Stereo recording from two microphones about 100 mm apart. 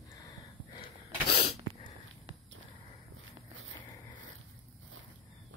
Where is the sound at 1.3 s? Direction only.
90° left.